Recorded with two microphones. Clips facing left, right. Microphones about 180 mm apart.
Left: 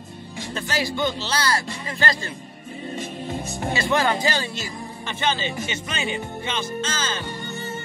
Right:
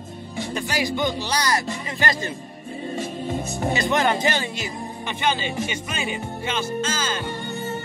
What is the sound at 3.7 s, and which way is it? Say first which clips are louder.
Speech: even; 20° right (ahead or behind).